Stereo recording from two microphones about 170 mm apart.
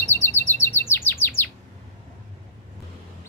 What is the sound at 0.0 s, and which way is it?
Chirp, 15° left (ahead or behind).